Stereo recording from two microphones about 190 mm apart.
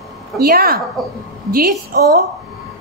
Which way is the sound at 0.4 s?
50° right (ahead or behind).